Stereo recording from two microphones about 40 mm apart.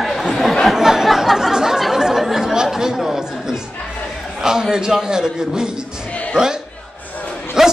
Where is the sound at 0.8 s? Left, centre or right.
Centre.